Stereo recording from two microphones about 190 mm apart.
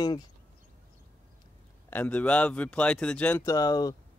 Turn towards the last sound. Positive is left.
turn(degrees=20)  # may be behind; listen again after turning